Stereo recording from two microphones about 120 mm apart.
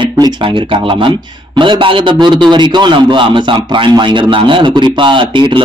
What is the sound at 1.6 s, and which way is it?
A man's voice, 45° right (ahead or behind).